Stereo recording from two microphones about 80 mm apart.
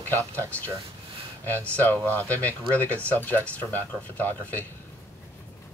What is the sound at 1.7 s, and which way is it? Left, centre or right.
Speech, left.